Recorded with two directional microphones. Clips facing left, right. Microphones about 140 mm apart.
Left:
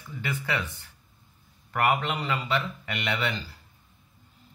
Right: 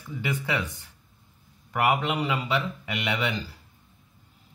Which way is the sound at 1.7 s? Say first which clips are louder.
Right 1 dB; 10° right (ahead or behind).